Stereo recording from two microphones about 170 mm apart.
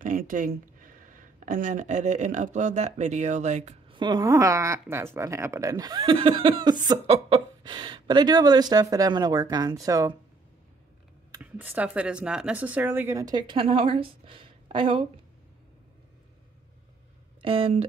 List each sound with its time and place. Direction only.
0.0 s speech: 50° right (ahead or behind)
3.9 s speech: 25° right (ahead or behind)
7.6 s speech: 25° right (ahead or behind)
11.3 s speech: 10° right (ahead or behind); by 15.0 s 30° right (ahead or behind)
17.4 s speech: 30° right (ahead or behind)